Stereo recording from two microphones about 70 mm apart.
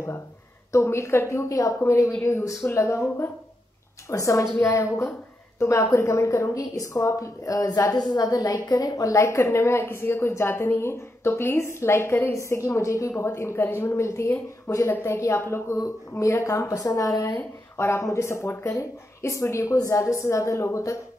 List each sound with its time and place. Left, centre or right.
0.7 s a woman's voice: left
17.3 s a woman's voice: left